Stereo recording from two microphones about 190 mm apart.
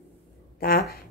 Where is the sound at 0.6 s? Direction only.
50° left (ahead or behind).